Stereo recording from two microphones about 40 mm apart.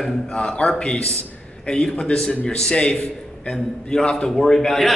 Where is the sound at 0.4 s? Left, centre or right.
Left.